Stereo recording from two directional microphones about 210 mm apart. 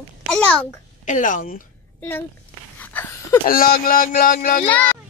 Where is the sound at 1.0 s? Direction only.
40° left (ahead or behind).